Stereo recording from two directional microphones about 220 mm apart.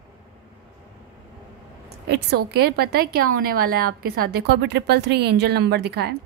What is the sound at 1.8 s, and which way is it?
A woman's voice, 50° right (ahead or behind).